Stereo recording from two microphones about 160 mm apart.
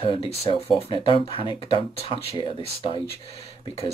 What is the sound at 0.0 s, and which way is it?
Speech, 35° left (ahead or behind).